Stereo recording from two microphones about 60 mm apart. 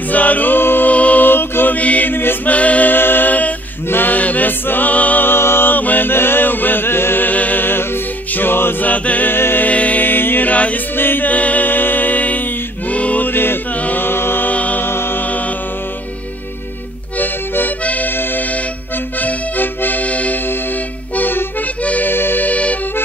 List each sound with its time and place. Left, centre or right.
0.1 s chant: left
2.5 s a capella: left
9.3 s music: left
9.7 s music: left
13.7 s a capella: left
14.0 s music: left
14.5 s music: left
14.9 s music: left
15.2 s music: left
17.2 s music: left
19.1 s accordion: left
21.2 s music: left
21.8 s accordion: left